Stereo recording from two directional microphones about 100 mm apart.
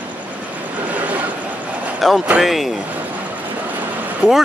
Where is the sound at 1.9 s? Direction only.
Centre (ahead or behind).